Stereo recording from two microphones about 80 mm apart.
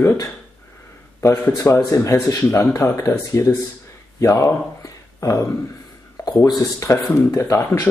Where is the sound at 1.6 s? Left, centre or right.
Left.